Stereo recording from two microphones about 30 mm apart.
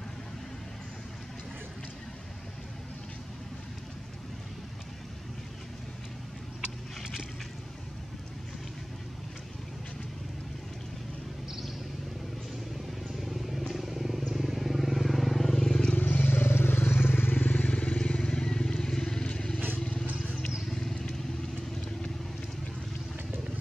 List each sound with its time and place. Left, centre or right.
13.2 s vehicle: centre
13.7 s wild animals: centre
14.3 s vehicle: centre
15.3 s vehicle: centre
16.0 s vehicle: left
17.5 s vehicle: left
18.3 s vehicle: left
20.6 s vehicle: centre